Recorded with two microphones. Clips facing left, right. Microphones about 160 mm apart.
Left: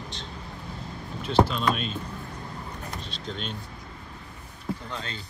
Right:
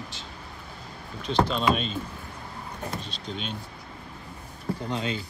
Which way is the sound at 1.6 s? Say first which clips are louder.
Right 2 dB; centre (ahead or behind).